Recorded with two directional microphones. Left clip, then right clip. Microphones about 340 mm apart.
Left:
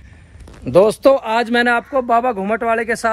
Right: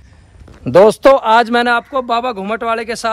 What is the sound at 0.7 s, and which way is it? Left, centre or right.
Speech, right.